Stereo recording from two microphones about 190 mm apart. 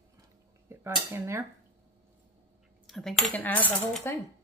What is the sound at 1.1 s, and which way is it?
Dishes, 15° right (ahead or behind).